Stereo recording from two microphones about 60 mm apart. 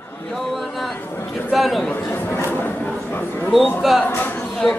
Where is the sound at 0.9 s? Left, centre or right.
Left.